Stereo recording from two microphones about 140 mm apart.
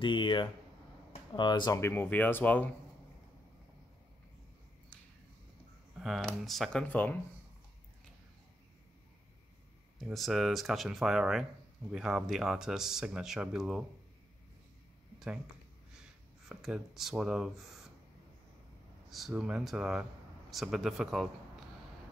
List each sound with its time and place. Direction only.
0.0 s speech: 35° left (ahead or behind)
1.8 s speech: 15° left (ahead or behind)
5.9 s speech: centre (ahead or behind)
9.9 s speech: centre (ahead or behind)
16.4 s speech: 5° right (ahead or behind)
19.0 s speech: centre (ahead or behind)